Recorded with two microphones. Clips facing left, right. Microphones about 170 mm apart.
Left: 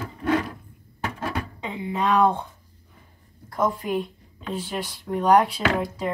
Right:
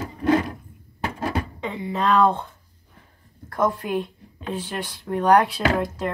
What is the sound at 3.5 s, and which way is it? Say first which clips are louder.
Speech: right 1 dB; 10° left (ahead or behind).